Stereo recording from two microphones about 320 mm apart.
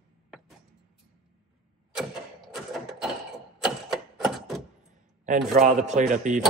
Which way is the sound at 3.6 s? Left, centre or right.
Centre.